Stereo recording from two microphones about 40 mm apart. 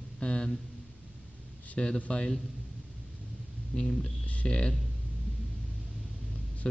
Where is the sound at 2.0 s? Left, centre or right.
Left.